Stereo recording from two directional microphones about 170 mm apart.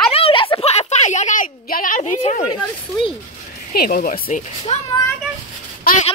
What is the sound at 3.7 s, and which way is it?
Speech, 60° left (ahead or behind).